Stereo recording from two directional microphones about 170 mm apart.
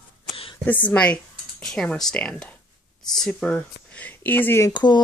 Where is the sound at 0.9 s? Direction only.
5° left (ahead or behind).